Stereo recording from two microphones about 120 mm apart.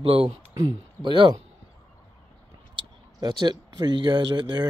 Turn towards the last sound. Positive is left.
turn(degrees=-40)  # may be behind; listen again after turning